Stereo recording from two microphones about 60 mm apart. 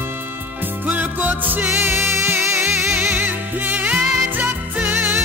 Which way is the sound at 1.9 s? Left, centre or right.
Right.